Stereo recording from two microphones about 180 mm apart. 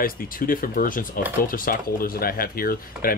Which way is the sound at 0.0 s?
50° left (ahead or behind).